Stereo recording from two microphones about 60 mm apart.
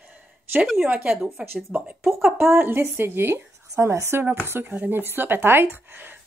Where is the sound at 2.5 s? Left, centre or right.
Right.